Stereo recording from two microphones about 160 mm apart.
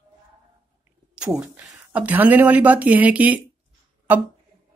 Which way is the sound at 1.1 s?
5° right (ahead or behind).